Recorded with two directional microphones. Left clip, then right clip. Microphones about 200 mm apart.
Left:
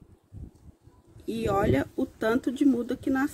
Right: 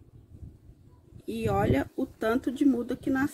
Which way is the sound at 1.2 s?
5° left (ahead or behind).